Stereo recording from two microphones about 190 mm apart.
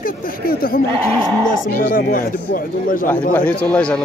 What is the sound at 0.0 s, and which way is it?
Speech, 50° left (ahead or behind).